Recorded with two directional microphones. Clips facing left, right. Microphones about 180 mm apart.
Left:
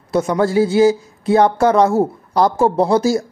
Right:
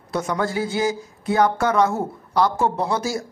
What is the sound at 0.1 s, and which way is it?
A man's voice, 25° left (ahead or behind).